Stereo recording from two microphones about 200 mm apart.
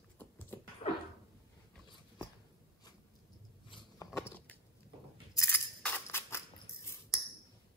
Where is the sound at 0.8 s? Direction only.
30° left (ahead or behind).